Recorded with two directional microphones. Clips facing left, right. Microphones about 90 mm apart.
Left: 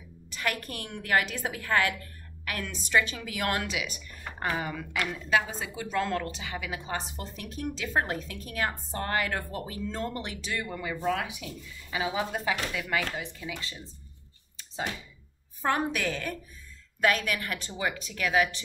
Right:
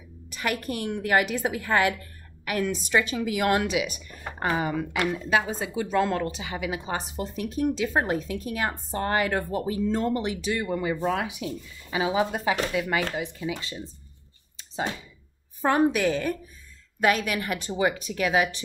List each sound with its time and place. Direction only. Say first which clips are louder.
0.3 s a woman's voice: right 4 dB; 15° right (ahead or behind)
14.6 s a sound: right 4 dB; 25° right (ahead or behind)
15.6 s a woman's voice: right 6 dB; 15° right (ahead or behind)